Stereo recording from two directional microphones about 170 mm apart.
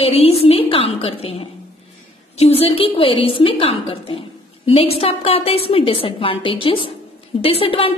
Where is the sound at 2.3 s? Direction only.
35° left (ahead or behind).